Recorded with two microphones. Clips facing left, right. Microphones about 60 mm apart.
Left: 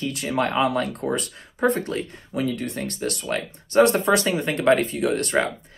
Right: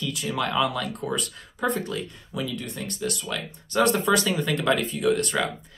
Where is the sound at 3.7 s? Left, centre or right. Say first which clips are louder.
Left 4 dB; left.